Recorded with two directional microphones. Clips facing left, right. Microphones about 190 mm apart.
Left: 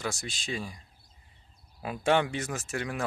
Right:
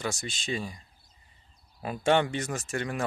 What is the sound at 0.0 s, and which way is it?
Speech, centre (ahead or behind).